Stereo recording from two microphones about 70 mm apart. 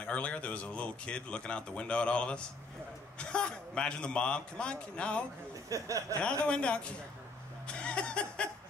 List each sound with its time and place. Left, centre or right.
0.0 s speech: centre
5.7 s speech: right
6.4 s speech: centre